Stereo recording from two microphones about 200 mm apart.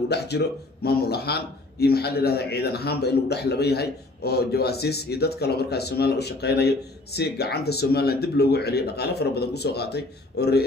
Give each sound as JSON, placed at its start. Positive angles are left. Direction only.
{"t": 0.1, "sound": "a man's voice", "side_deg": 55}